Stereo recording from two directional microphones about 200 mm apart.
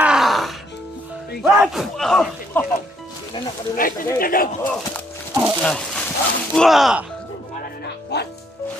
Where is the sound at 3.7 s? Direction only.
45° left (ahead or behind).